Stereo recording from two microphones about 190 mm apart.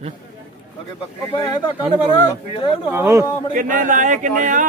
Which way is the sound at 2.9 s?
15° right (ahead or behind).